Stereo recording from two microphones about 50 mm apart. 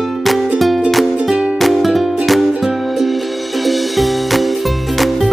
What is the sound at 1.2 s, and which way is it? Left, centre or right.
Music, centre.